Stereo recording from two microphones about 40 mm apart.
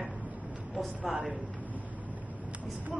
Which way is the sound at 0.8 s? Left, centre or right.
Centre.